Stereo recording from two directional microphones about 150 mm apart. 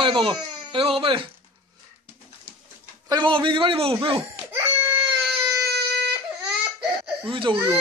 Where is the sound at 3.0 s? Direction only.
30° right (ahead or behind).